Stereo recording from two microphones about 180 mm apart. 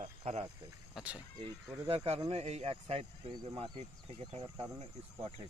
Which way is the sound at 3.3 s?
25° right (ahead or behind).